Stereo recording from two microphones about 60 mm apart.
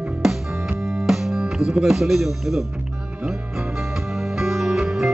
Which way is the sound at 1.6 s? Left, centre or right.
Centre.